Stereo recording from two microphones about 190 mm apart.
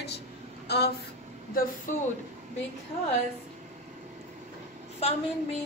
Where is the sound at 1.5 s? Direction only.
50° left (ahead or behind).